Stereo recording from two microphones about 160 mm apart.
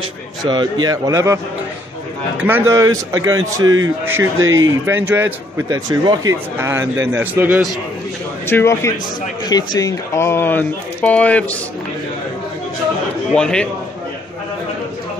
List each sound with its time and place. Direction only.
0.5 s a man's voice: 25° right (ahead or behind)
2.4 s a man's voice: 15° right (ahead or behind)
8.5 s speech: 15° left (ahead or behind)
13.3 s a man's voice: 5° left (ahead or behind)